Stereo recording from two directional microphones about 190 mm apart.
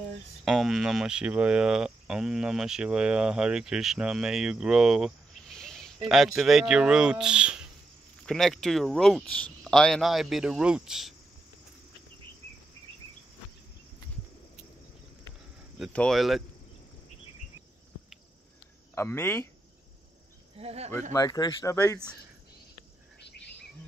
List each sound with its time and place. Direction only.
0.5 s speech: centre (ahead or behind)
15.8 s speech: 5° left (ahead or behind)
18.9 s speech: 10° left (ahead or behind)
20.5 s speech: 35° right (ahead or behind)
21.1 s speech: 20° left (ahead or behind)